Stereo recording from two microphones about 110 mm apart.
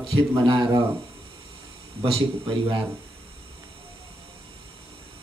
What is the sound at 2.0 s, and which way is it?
Speech, 55° right (ahead or behind).